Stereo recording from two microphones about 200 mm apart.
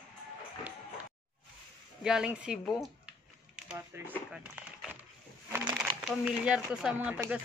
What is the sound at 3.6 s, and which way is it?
Speech, 10° right (ahead or behind).